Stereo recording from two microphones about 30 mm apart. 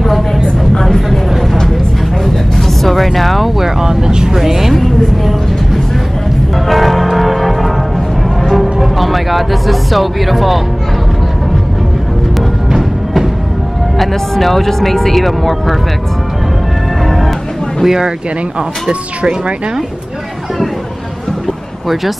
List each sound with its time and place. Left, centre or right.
0.8 s vehicle: centre
2.2 s music: centre
3.8 s vehicle: right
4.4 s a woman's voice: centre
4.7 s a sound: centre
6.5 s music: centre
12.4 s music: centre
13.9 s speech: centre
17.0 s music: centre
17.8 s speech: centre
18.9 s speech: right